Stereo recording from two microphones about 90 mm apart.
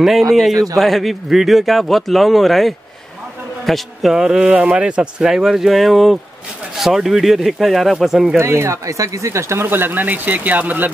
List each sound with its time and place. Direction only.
0.0 s a man's voice: centre (ahead or behind)
8.4 s speech: 30° right (ahead or behind)